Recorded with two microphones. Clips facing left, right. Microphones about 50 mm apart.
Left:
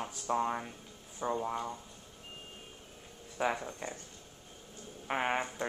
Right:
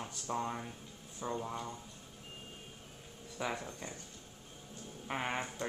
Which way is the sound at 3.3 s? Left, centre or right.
Centre.